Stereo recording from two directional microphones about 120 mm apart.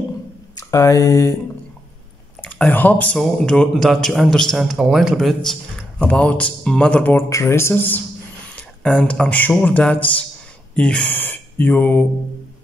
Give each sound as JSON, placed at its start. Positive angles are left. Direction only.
{"t": 0.6, "sound": "speech", "side_deg": 25}
{"t": 2.4, "sound": "a man's voice", "side_deg": 15}
{"t": 7.2, "sound": "speech", "side_deg": 25}